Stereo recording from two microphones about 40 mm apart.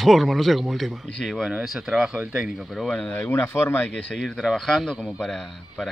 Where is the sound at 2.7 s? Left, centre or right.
Centre.